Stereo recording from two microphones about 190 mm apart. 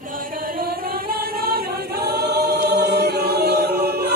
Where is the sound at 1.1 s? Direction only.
55° right (ahead or behind).